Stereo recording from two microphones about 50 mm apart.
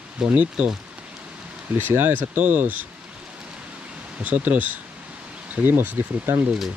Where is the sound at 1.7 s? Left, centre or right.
Right.